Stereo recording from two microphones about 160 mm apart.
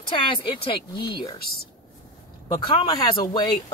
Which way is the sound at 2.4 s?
30° left (ahead or behind).